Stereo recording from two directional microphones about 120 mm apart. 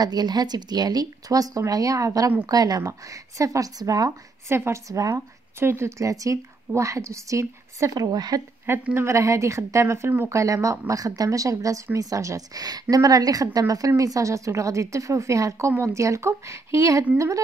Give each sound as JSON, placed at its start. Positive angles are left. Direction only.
{"t": 0.0, "sound": "a woman's voice", "side_deg": -35}
{"t": 8.9, "sound": "a woman's voice", "side_deg": -25}